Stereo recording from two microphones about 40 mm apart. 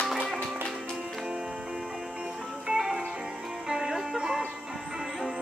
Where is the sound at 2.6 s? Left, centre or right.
Centre.